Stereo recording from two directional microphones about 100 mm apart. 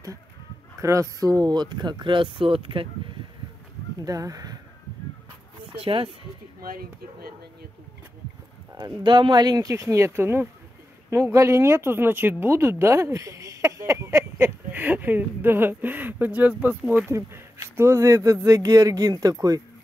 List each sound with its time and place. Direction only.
0.7 s speech: 30° right (ahead or behind); by 2.9 s 65° right (ahead or behind)
4.0 s speech: 35° right (ahead or behind)
5.8 s speech: 65° right (ahead or behind)
8.7 s speech: 50° right (ahead or behind)